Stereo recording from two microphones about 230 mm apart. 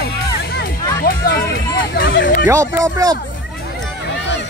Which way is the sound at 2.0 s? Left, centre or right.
Left.